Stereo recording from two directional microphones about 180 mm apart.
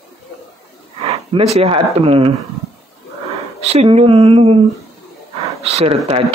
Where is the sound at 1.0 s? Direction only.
35° right (ahead or behind).